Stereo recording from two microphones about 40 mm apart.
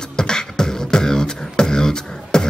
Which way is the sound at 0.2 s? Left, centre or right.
Centre.